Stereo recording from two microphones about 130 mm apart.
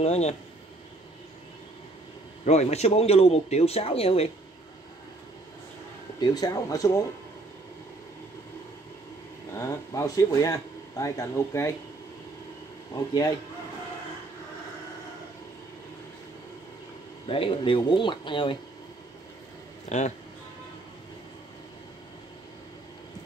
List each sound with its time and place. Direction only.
0.0 s speech: 55° left (ahead or behind)
2.4 s speech: 60° left (ahead or behind)
6.1 s speech: 30° left (ahead or behind)
9.6 s speech: 25° left (ahead or behind)
12.9 s speech: 30° left (ahead or behind)
17.3 s speech: 45° left (ahead or behind)
19.9 s speech: 65° left (ahead or behind)